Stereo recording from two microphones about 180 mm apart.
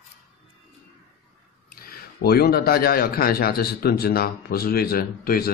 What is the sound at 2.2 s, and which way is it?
A man's voice, 60° left (ahead or behind).